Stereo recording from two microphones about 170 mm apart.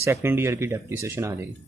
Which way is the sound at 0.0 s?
15° right (ahead or behind).